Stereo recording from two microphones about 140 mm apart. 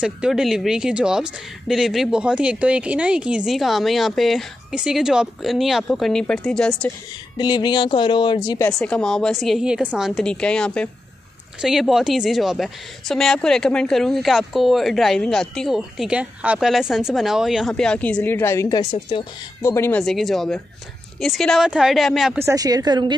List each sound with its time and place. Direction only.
0.0 s a woman's voice: 5° right (ahead or behind)
7.3 s speech: 30° left (ahead or behind)
8.5 s speech: 20° left (ahead or behind)
8.7 s a woman's voice: 5° left (ahead or behind); by 19.2 s 35° left (ahead or behind)
19.6 s speech: 20° left (ahead or behind)
20.0 s a woman's voice: centre (ahead or behind)
22.4 s a woman's voice: 25° right (ahead or behind)